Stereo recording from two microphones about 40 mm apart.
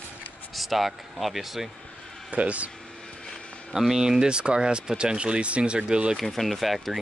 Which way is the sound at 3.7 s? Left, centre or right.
Centre.